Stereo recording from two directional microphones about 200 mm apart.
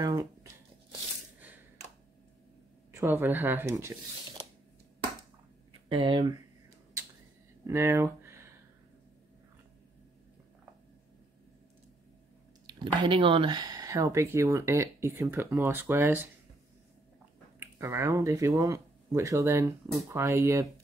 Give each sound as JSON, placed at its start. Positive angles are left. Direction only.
{"t": 0.0, "sound": "tearing", "side_deg": -15}
{"t": 2.9, "sound": "speech", "side_deg": -15}
{"t": 5.9, "sound": "speech", "side_deg": -25}
{"t": 7.6, "sound": "speech", "side_deg": -15}
{"t": 12.6, "sound": "speech", "side_deg": -25}
{"t": 17.6, "sound": "speech", "side_deg": -15}